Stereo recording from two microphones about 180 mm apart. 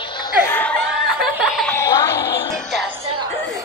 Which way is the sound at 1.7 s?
15° left (ahead or behind).